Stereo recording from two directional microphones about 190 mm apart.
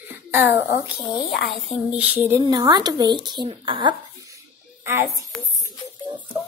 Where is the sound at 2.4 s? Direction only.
20° right (ahead or behind).